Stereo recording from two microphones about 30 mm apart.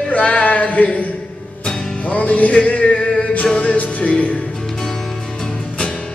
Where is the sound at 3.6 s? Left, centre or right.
Left.